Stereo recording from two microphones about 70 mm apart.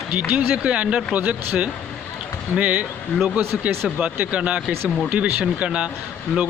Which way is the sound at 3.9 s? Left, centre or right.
Centre.